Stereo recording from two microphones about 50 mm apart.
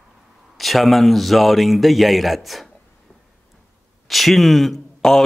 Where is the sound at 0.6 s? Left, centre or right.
Centre.